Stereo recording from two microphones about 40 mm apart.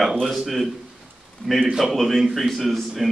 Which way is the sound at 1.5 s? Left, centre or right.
Centre.